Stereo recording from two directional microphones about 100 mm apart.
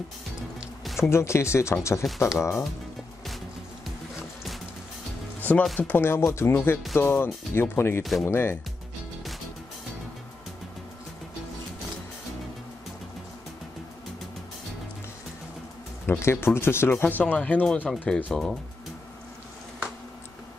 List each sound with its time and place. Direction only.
0.6 s music: 5° right (ahead or behind)
1.0 s speech: 25° left (ahead or behind)
5.8 s speech: 20° left (ahead or behind)
8.0 s speech: centre (ahead or behind)
8.3 s speech: 25° left (ahead or behind)
16.1 s speech: 25° left (ahead or behind); by 18.6 s 5° left (ahead or behind)